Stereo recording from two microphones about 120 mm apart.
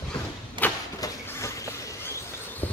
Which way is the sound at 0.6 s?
15° left (ahead or behind).